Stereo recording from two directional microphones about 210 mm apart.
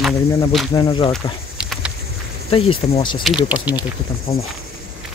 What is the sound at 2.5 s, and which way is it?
Speech, 25° left (ahead or behind).